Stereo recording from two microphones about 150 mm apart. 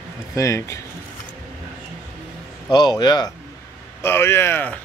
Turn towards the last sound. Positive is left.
turn(degrees=15)  # may be behind; listen again after turning